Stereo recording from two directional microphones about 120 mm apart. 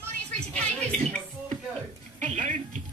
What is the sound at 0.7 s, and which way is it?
Music, 10° left (ahead or behind).